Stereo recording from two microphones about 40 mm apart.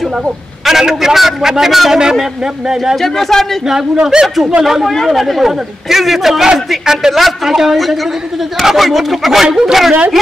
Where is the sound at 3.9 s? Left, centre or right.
Centre.